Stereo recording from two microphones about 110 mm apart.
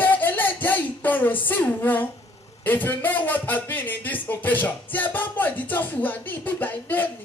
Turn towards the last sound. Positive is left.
turn(degrees=15)  # may be behind; listen again after turning